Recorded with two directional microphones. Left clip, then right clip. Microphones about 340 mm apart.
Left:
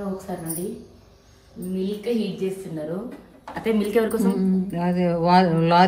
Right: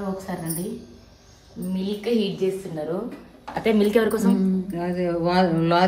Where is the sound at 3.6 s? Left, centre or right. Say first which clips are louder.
Right 2 dB; right.